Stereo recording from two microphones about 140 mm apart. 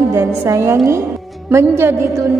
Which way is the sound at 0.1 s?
20° right (ahead or behind).